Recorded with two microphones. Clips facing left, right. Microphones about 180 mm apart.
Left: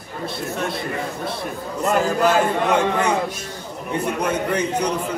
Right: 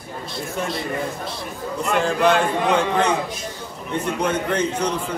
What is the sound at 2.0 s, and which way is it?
A man's voice, 5° left (ahead or behind).